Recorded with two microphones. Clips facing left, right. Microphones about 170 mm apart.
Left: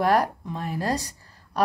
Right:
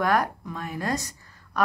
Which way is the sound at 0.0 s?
30° left (ahead or behind).